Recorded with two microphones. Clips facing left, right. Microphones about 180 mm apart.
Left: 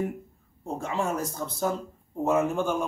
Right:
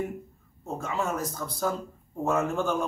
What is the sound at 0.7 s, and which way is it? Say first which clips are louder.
A man's voice: left 1 dB; 30° left (ahead or behind).